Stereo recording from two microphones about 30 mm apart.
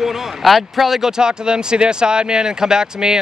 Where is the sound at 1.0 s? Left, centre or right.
Right.